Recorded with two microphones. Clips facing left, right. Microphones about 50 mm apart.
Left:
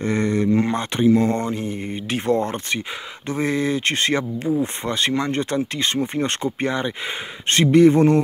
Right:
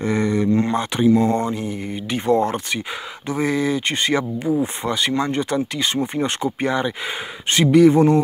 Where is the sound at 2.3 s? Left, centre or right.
Right.